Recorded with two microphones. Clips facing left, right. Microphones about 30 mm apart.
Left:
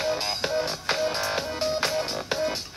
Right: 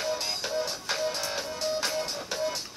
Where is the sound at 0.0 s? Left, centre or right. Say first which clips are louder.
Left 4 dB; left.